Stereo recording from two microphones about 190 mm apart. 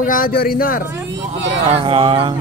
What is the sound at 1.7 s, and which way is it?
Speech, 30° right (ahead or behind).